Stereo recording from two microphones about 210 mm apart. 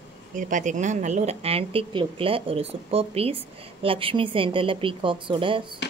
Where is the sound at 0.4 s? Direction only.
35° right (ahead or behind).